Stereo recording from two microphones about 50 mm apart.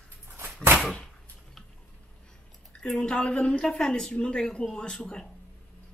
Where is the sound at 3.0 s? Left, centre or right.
Left.